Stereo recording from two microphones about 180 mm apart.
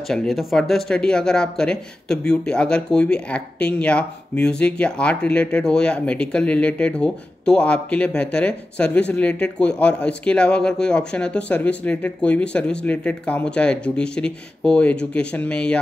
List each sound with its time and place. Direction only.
0.1 s speech: centre (ahead or behind)